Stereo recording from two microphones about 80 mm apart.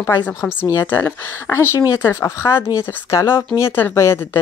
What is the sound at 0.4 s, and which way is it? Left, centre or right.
Speech, left.